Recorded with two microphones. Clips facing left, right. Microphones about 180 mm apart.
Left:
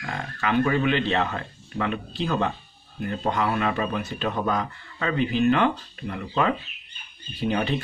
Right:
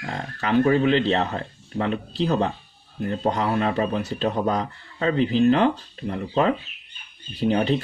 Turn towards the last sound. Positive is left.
turn(degrees=-35)  # may be behind; listen again after turning